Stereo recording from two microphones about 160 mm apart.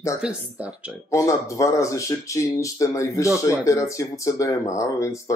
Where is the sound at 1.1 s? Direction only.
20° left (ahead or behind).